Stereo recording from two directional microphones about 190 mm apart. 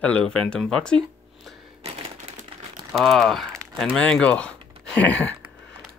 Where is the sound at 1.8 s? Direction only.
35° right (ahead or behind).